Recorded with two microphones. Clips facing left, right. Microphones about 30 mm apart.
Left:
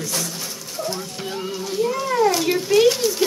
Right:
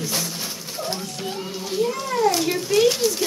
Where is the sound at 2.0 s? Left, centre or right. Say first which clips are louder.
Left 3 dB; centre.